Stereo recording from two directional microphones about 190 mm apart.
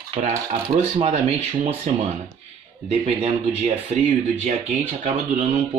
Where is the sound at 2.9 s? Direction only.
35° right (ahead or behind).